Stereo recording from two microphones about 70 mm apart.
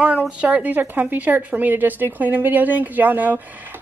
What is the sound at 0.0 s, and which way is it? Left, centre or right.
Speech, centre.